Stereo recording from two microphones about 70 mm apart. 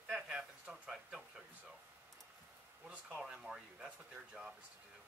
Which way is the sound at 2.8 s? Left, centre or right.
Centre.